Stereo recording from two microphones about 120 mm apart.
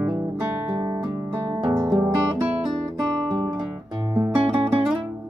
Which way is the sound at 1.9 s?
10° right (ahead or behind).